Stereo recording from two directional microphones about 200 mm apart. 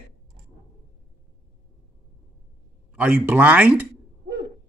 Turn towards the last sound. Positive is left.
turn(degrees=-5)  # may be behind; listen again after turning